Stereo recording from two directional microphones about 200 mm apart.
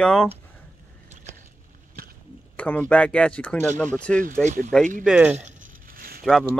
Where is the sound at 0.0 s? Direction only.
5° left (ahead or behind).